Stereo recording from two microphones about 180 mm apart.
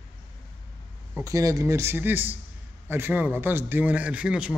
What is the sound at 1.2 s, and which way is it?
A man's voice, 20° right (ahead or behind).